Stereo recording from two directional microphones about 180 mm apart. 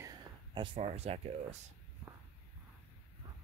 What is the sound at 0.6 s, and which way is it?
Speech, 35° right (ahead or behind).